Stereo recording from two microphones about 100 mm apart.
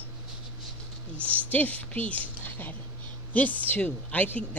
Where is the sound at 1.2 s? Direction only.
15° left (ahead or behind).